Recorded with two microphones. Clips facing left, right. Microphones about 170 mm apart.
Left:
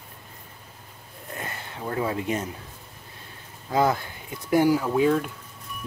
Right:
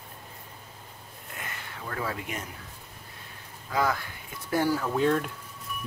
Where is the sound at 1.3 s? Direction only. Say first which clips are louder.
Left 5 dB; 30° left (ahead or behind).